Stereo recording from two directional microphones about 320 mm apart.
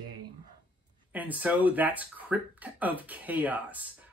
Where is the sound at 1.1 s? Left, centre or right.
Centre.